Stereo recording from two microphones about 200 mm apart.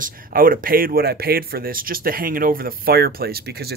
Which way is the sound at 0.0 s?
45° right (ahead or behind).